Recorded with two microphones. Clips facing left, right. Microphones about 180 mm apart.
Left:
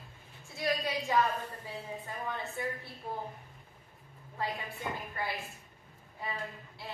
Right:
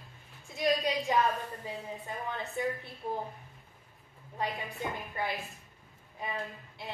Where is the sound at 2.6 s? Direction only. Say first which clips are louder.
Right 6 dB; 20° right (ahead or behind).